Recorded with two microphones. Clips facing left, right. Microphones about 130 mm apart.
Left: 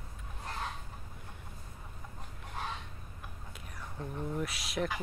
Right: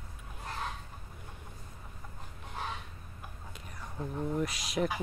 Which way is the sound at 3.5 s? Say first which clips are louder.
Right 1 dB; centre (ahead or behind).